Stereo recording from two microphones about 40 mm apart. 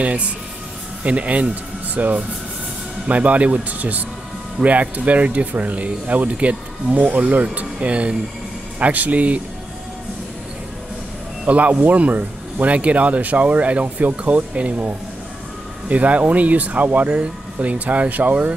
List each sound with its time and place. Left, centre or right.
1.0 s speech: right
11.4 s speech: right
15.9 s speech: right